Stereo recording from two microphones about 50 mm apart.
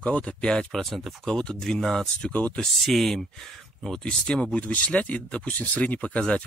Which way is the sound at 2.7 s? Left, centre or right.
Centre.